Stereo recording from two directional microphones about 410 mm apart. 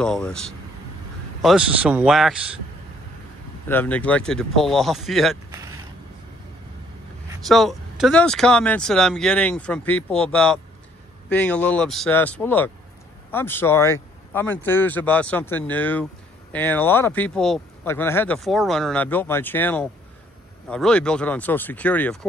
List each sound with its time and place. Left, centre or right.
0.0 s speech: centre
3.6 s speech: centre
7.2 s speech: centre